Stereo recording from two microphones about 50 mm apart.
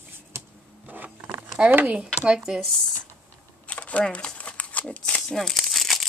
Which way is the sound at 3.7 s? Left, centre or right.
Left.